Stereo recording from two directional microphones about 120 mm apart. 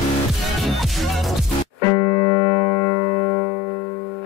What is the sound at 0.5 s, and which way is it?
Music, centre (ahead or behind).